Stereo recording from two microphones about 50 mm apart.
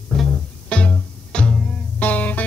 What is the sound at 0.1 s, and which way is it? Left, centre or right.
Music, centre.